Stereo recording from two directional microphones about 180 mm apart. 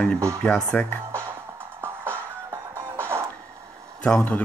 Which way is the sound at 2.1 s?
15° right (ahead or behind).